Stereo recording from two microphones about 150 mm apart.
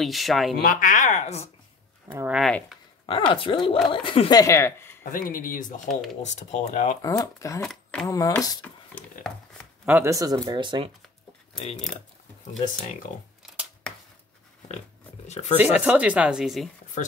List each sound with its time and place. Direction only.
0.0 s speech: centre (ahead or behind)
0.6 s speech: 70° left (ahead or behind); by 1.5 s 45° left (ahead or behind)
2.0 s speech: 15° right (ahead or behind)
3.1 s speech: 35° left (ahead or behind); by 5.0 s 15° left (ahead or behind)
5.1 s speech: 65° left (ahead or behind); by 7.0 s 50° left (ahead or behind)
7.0 s speech: 20° left (ahead or behind)
7.6 s a sound: centre (ahead or behind)
8.1 s speech: 20° left (ahead or behind)
9.8 s speech: 15° right (ahead or behind); by 10.9 s 30° right (ahead or behind)
13.1 s speech: 55° left (ahead or behind)
13.9 s a sound: 5° left (ahead or behind)
15.2 s speech: 45° left (ahead or behind)
15.5 s speech: 10° right (ahead or behind)